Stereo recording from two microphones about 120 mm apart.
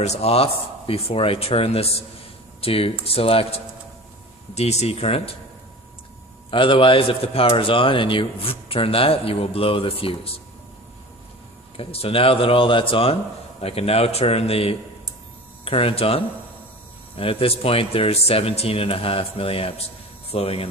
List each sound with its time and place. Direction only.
0.0 s a man's voice: 60° left (ahead or behind)
4.6 s speech: 65° left (ahead or behind)
6.5 s a man's voice: 45° left (ahead or behind)
11.7 s speech: 50° left (ahead or behind)
17.2 s a man's voice: 50° left (ahead or behind)